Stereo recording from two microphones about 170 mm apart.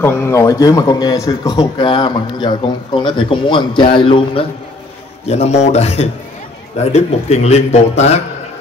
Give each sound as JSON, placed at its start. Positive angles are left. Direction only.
{"t": 0.0, "sound": "a man's voice", "side_deg": 15}